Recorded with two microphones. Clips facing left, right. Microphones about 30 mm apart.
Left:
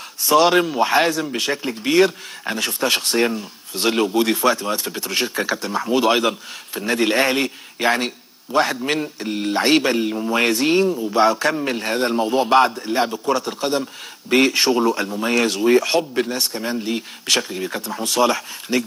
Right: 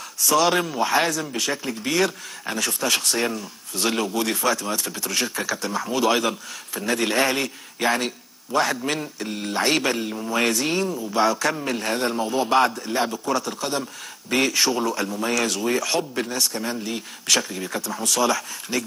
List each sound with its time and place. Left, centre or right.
0.3 s a man's voice: left